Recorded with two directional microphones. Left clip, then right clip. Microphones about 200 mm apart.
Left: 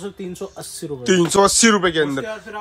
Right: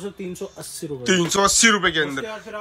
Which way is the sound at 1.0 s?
20° left (ahead or behind).